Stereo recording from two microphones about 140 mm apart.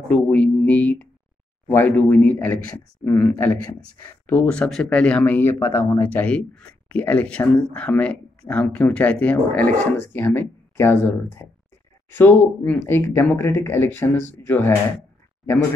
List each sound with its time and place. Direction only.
0.1 s speech: 10° left (ahead or behind)